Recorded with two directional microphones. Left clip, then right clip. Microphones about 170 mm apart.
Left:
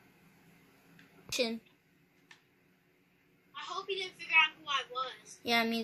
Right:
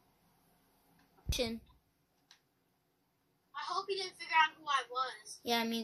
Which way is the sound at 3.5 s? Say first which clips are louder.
Right 1 dB; 35° right (ahead or behind).